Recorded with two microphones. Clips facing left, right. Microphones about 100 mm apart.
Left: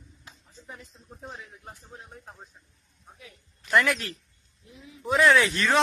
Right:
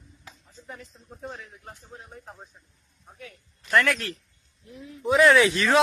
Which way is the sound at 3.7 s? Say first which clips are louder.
Right 1 dB; 5° left (ahead or behind).